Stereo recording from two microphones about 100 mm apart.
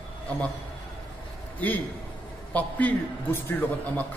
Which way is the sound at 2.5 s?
15° left (ahead or behind).